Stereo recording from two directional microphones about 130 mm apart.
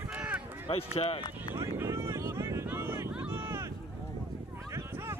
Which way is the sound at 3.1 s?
15° right (ahead or behind).